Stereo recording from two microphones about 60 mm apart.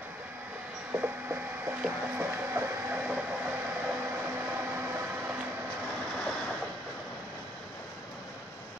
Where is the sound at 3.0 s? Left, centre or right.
Right.